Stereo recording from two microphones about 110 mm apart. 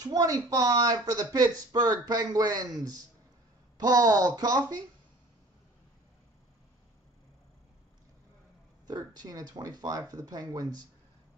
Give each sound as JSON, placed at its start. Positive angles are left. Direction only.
{"t": 0.0, "sound": "speech", "side_deg": -35}
{"t": 8.8, "sound": "speech", "side_deg": -35}